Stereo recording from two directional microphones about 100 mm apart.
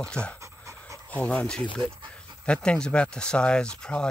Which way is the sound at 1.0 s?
15° left (ahead or behind).